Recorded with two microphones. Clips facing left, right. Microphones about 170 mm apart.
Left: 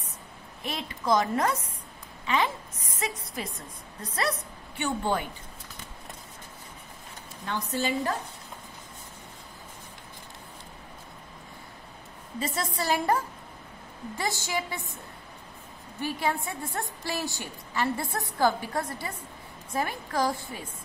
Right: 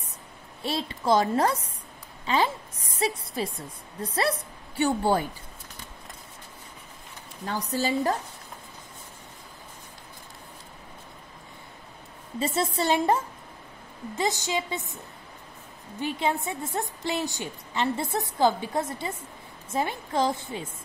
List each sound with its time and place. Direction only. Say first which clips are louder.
0.6 s a woman's voice: right 5 dB; 30° right (ahead or behind)
7.4 s a woman's voice: right 2 dB; 35° right (ahead or behind)
12.4 s a woman's voice: right 5 dB; 25° right (ahead or behind)
16.0 s a woman's voice: right 2 dB; 20° right (ahead or behind)